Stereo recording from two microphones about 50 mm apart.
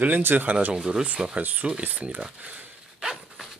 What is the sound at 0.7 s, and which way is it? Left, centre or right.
Speech, centre.